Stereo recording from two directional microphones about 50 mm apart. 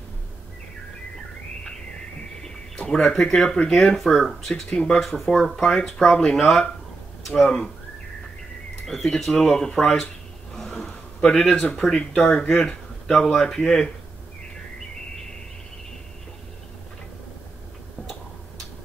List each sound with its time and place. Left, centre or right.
2.4 s speech: centre
3.7 s speech: centre
4.6 s speech: left
5.1 s speech: centre
8.8 s speech: centre
10.5 s a sound: centre
11.8 s speech: centre
12.4 s speech: centre